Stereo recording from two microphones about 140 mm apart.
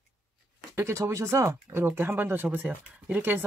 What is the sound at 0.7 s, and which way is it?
Speech, 20° right (ahead or behind).